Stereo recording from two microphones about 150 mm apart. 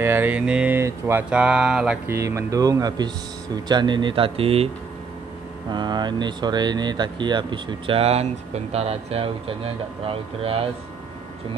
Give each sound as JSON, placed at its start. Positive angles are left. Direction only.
{"t": 0.0, "sound": "speech", "side_deg": -15}
{"t": 1.3, "sound": "speech", "side_deg": -5}
{"t": 2.0, "sound": "speech", "side_deg": -20}
{"t": 5.7, "sound": "speech", "side_deg": -30}